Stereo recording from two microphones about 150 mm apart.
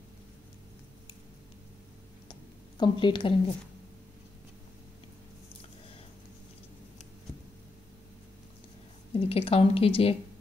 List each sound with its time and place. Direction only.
2.8 s speech: 30° left (ahead or behind)
9.1 s speech: 40° left (ahead or behind)